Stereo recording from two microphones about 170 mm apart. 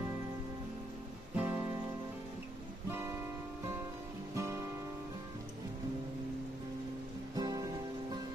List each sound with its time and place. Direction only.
1.3 s music: 10° right (ahead or behind)
4.4 s music: 15° right (ahead or behind)
7.3 s music: 20° right (ahead or behind)